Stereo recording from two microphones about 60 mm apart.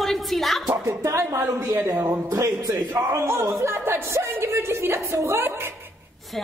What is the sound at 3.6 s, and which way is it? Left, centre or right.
A woman's voice, right.